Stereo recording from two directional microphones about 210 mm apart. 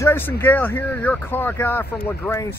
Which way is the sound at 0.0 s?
10° left (ahead or behind).